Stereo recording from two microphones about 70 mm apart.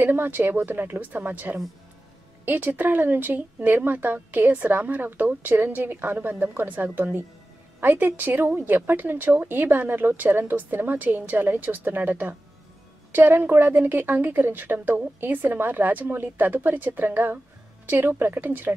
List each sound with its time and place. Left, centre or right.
0.0 s speech: right